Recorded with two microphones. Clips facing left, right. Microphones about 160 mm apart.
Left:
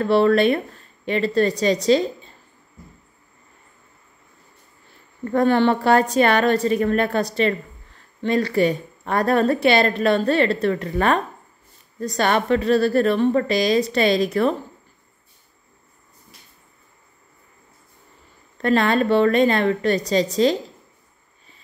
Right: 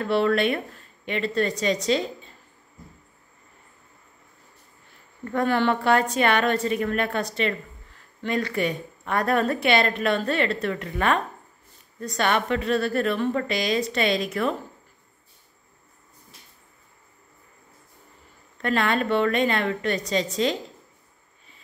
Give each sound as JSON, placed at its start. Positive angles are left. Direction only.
{"t": 0.0, "sound": "a woman's voice", "side_deg": 35}
{"t": 5.2, "sound": "a woman's voice", "side_deg": 35}
{"t": 18.6, "sound": "a woman's voice", "side_deg": 35}